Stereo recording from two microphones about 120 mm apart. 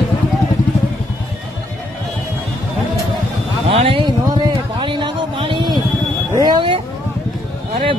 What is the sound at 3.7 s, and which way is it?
Speech, 50° right (ahead or behind).